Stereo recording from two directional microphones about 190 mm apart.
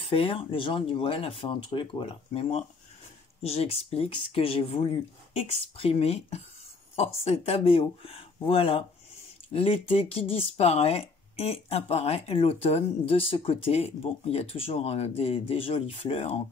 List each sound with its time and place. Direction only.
0.0 s speech: 30° left (ahead or behind)